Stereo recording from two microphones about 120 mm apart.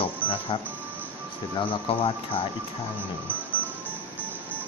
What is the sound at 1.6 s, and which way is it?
Speech, 45° left (ahead or behind).